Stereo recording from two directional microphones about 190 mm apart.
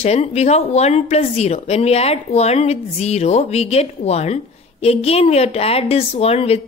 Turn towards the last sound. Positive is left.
turn(degrees=30)  # may be behind; listen again after turning